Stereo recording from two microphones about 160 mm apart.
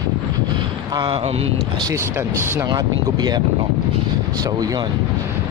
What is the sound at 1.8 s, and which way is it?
Speech, 20° right (ahead or behind).